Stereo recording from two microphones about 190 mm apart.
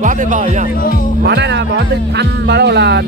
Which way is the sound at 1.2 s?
65° right (ahead or behind).